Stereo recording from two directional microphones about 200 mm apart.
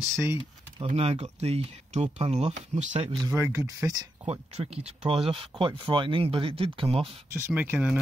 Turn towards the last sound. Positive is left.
turn(degrees=-5)  # may be behind; listen again after turning